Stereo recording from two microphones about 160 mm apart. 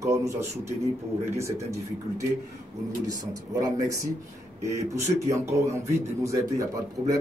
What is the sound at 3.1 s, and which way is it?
Speech, 20° right (ahead or behind).